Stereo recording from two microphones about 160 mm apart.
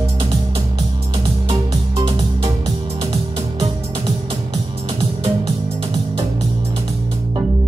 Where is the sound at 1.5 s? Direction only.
35° right (ahead or behind).